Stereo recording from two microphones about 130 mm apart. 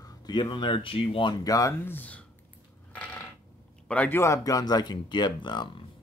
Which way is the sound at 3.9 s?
15° left (ahead or behind).